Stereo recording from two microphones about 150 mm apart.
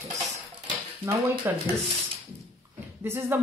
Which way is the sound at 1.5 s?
15° right (ahead or behind).